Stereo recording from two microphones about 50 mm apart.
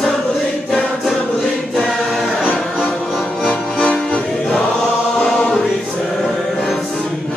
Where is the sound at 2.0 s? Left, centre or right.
Centre.